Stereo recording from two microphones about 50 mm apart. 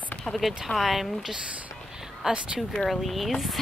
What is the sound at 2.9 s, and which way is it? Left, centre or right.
Speech, centre.